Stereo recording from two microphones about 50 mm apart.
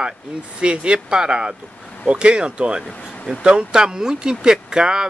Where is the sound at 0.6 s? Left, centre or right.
Right.